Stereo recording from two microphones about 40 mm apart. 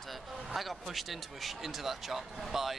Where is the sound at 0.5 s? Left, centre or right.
Centre.